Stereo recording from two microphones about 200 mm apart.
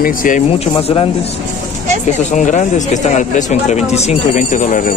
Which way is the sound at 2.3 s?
40° left (ahead or behind).